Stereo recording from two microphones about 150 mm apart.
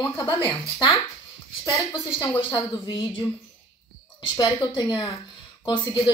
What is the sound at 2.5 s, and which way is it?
Speech, 30° left (ahead or behind).